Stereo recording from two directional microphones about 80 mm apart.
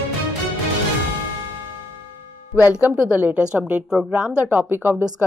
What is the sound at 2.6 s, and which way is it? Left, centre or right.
A woman's voice, centre.